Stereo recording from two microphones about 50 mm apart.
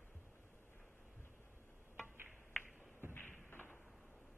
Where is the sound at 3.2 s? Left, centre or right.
Left.